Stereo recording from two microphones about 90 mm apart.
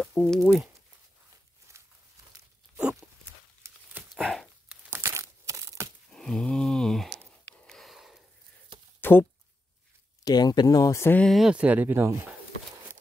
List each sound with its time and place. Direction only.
0.0 s speech: 10° left (ahead or behind)
1.7 s a sound: 30° right (ahead or behind)
4.1 s dog: 5° left (ahead or behind)
4.9 s crumpling: 30° right (ahead or behind)
6.1 s a sound: 5° left (ahead or behind)
9.0 s a sound: 25° left (ahead or behind)
10.2 s speech: 50° left (ahead or behind)
11.2 s speech: centre (ahead or behind)
11.5 s speech: 15° right (ahead or behind)